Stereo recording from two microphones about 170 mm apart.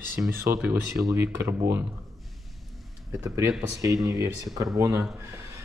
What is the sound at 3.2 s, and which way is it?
Speech, 15° right (ahead or behind).